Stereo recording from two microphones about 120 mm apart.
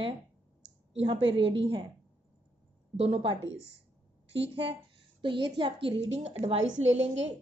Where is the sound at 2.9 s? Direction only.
55° right (ahead or behind).